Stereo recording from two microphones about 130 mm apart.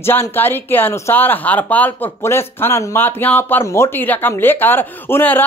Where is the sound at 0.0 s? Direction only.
15° left (ahead or behind).